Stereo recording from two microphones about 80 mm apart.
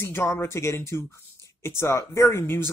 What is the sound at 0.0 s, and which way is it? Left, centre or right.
Speech, left.